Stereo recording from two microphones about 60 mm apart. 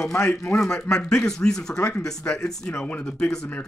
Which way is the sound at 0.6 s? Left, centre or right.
Centre.